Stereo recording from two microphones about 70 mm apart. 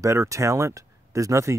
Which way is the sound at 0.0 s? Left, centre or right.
Right.